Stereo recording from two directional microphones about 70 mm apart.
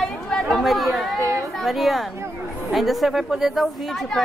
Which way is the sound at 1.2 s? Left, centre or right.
Right.